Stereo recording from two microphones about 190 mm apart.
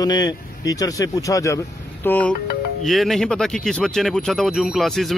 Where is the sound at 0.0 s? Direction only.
20° left (ahead or behind).